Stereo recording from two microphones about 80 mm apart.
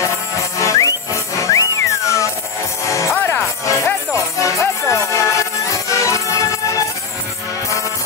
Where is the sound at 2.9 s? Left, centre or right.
Left.